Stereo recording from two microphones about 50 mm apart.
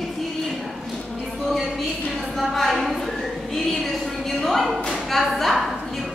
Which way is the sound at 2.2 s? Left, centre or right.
Centre.